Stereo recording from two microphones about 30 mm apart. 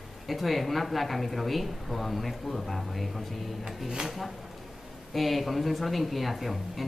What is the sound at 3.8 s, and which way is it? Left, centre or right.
Speech, right.